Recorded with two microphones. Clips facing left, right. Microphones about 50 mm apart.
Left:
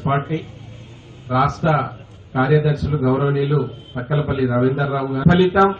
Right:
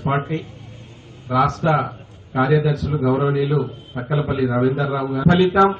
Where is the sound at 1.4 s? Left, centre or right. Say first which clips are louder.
Left 1 dB; centre.